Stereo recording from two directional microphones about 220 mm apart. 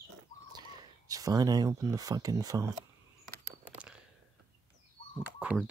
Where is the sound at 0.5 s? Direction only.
20° right (ahead or behind).